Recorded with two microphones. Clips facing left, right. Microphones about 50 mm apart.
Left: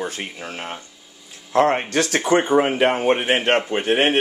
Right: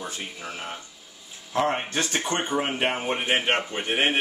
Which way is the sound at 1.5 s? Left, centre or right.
Left.